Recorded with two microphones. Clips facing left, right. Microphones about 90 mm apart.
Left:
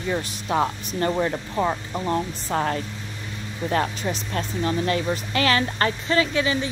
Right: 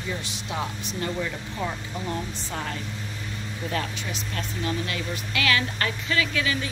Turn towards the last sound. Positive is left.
turn(degrees=25)  # may be behind; listen again after turning